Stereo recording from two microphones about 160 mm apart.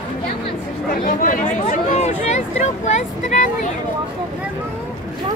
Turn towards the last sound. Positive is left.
turn(degrees=50)  # may be behind; listen again after turning